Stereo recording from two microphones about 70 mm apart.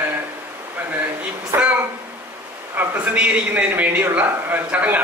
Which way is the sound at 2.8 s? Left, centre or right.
Right.